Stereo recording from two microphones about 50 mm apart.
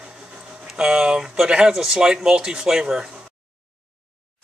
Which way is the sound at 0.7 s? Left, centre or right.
Centre.